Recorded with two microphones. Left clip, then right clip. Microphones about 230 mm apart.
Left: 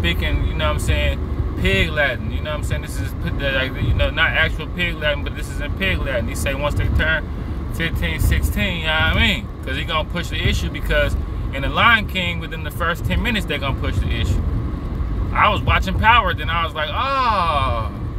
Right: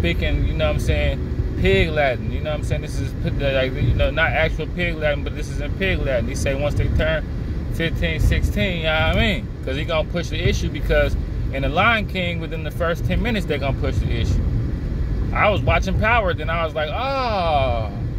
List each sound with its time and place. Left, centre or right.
0.0 s speech: left
15.3 s speech: left